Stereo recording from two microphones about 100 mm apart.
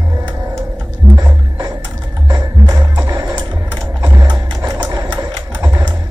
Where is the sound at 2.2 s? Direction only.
40° right (ahead or behind).